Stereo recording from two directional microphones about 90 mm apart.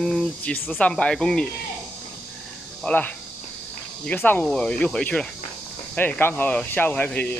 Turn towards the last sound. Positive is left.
turn(degrees=15)  # may be behind; listen again after turning